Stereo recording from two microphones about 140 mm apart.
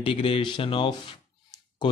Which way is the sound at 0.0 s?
40° left (ahead or behind).